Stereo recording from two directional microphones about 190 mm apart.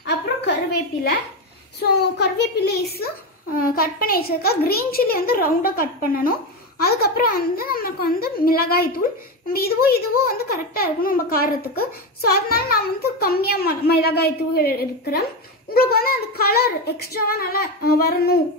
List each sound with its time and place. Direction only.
1.8 s a child's voice: 60° left (ahead or behind)